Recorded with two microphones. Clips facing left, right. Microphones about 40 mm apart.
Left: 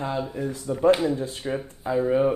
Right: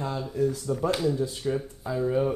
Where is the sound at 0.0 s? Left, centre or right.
Left.